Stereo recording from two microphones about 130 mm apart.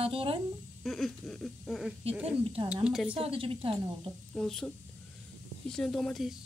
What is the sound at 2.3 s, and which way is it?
Speech, 45° right (ahead or behind).